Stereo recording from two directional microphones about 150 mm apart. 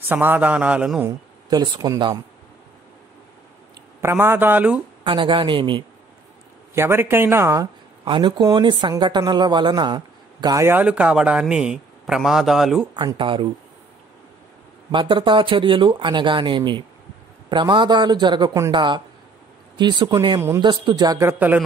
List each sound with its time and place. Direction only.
0.1 s a man's voice: 15° right (ahead or behind)
1.0 s speech: 25° right (ahead or behind)
4.0 s a man's voice: 15° right (ahead or behind)
5.0 s speech: 35° right (ahead or behind)
6.7 s a man's voice: 15° right (ahead or behind)
8.0 s speech: 35° right (ahead or behind); by 12.8 s centre (ahead or behind)
12.9 s speech: 30° right (ahead or behind)
14.9 s speech: 30° right (ahead or behind)
20.3 s speech: 20° right (ahead or behind)
20.6 s speech: 30° right (ahead or behind); by 21.6 s 10° right (ahead or behind)